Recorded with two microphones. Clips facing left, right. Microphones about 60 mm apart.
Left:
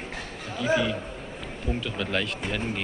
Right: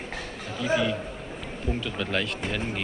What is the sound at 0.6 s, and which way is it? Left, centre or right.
Speech, centre.